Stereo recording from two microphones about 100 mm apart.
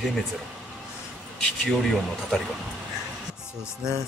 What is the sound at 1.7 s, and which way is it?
Speech, centre (ahead or behind).